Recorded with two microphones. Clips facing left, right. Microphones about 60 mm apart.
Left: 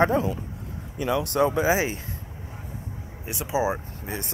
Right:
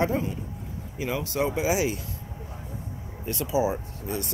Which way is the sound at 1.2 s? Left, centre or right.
Left.